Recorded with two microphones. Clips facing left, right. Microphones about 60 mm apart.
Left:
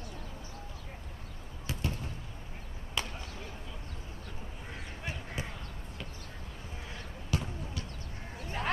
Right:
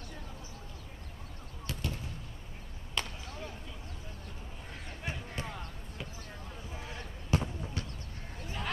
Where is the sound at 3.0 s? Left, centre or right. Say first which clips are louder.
Even; centre.